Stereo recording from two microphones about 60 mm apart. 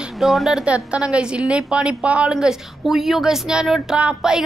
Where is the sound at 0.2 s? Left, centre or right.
Centre.